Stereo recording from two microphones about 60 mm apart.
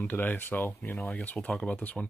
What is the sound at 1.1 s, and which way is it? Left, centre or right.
Speech, left.